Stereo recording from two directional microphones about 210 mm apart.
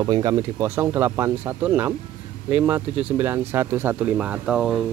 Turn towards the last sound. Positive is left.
turn(degrees=0)  # may be behind; listen again after turning